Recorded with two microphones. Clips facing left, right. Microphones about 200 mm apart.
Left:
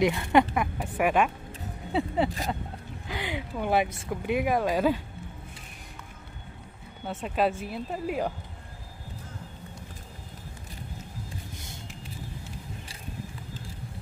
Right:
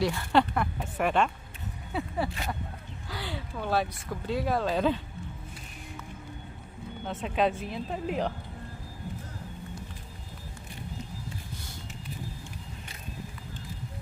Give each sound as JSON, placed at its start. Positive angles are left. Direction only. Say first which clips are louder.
{"t": 0.0, "sound": "speech", "louder": "left 3 dB", "side_deg": 15}
{"t": 1.9, "sound": "speech", "louder": "left 5 dB", "side_deg": 25}
{"t": 7.1, "sound": "a woman's voice", "louder": "left 1 dB", "side_deg": 5}